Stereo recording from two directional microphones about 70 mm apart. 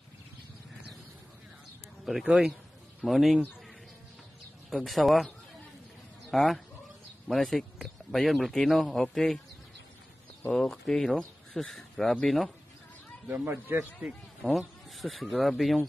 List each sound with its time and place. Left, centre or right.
2.0 s speech: centre
4.8 s speech: centre
6.3 s speech: centre
10.5 s speech: centre
13.5 s speech: right
14.4 s speech: centre